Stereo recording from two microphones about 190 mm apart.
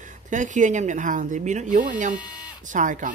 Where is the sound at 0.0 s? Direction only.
40° right (ahead or behind).